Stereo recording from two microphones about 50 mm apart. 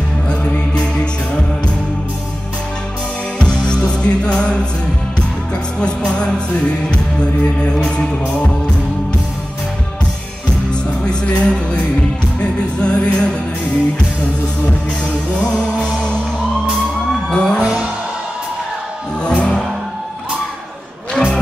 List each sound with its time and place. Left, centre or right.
0.3 s music: left
3.3 s music: centre
5.8 s music: centre
7.7 s music: centre
10.7 s music: centre
17.3 s music: centre
19.2 s music: centre
21.2 s music: left